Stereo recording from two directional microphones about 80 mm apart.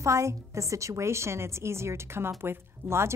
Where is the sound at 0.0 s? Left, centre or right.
Right.